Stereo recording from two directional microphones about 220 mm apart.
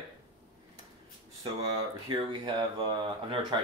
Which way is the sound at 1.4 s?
20° right (ahead or behind).